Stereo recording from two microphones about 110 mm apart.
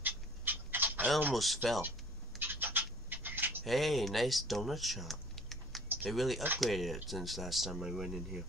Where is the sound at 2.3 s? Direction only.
20° right (ahead or behind).